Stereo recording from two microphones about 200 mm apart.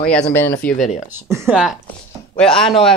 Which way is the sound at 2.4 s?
5° left (ahead or behind).